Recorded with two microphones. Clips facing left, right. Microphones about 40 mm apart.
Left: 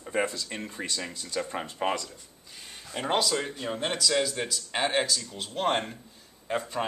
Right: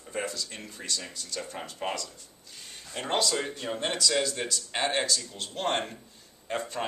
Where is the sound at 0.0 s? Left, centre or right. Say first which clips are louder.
Left 5 dB; left.